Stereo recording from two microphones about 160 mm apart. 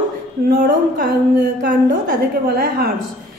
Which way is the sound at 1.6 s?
65° right (ahead or behind).